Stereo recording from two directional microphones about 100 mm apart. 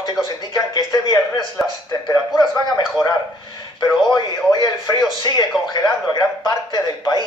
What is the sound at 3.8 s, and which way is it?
A man's voice, 45° left (ahead or behind).